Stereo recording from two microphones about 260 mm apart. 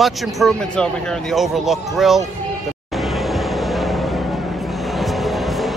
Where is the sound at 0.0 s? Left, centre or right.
Centre.